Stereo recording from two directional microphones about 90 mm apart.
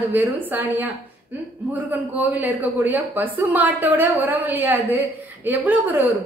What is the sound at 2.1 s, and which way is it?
A woman's voice, 20° right (ahead or behind).